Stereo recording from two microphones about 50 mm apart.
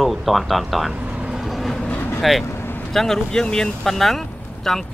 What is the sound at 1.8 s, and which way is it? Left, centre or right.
Vehicle, left.